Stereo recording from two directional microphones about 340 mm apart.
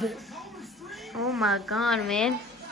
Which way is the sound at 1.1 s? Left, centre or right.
Centre.